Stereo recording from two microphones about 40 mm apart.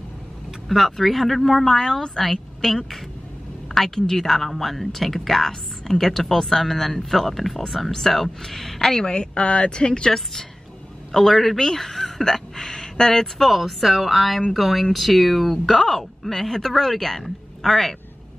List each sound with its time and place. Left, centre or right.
0.7 s a woman's voice: centre; by 10.1 s left
11.1 s speech: centre
13.5 s speech: centre